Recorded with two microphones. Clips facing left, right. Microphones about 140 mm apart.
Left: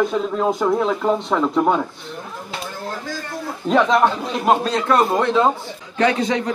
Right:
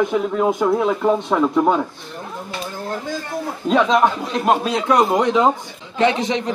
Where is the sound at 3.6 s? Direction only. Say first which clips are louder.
Even; 15° right (ahead or behind).